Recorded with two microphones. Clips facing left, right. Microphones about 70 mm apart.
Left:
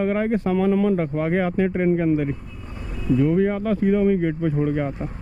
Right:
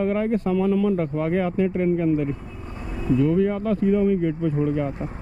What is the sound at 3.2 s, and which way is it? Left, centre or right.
Speech, left.